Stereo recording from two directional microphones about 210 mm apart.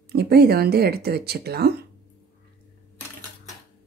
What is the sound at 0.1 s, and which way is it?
Speech, 50° right (ahead or behind).